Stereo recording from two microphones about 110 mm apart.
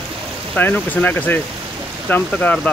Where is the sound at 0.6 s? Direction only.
15° left (ahead or behind).